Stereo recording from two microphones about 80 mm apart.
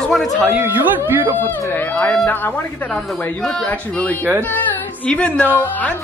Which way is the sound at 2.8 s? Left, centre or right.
Centre.